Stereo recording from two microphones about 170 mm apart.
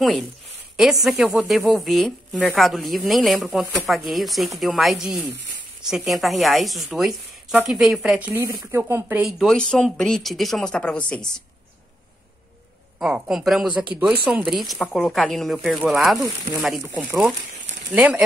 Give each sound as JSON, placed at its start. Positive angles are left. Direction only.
{"t": 1.0, "sound": "speech", "side_deg": -5}
{"t": 9.2, "sound": "speech", "side_deg": 0}
{"t": 13.0, "sound": "speech", "side_deg": -5}
{"t": 16.7, "sound": "speech", "side_deg": -15}